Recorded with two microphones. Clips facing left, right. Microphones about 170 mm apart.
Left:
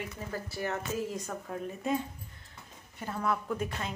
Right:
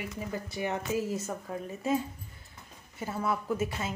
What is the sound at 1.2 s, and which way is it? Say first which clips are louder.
A woman's voice: right 1 dB; 5° right (ahead or behind).